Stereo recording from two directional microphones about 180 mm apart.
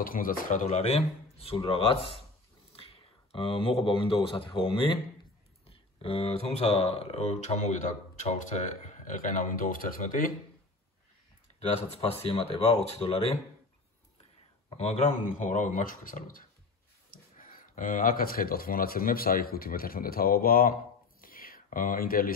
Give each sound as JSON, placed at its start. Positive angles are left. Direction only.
{"t": 0.0, "sound": "speech", "side_deg": 50}
{"t": 12.0, "sound": "speech", "side_deg": 30}
{"t": 14.8, "sound": "speech", "side_deg": 35}
{"t": 21.2, "sound": "whispering", "side_deg": 55}